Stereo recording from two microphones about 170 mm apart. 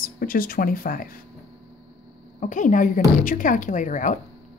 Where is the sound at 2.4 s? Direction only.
45° left (ahead or behind).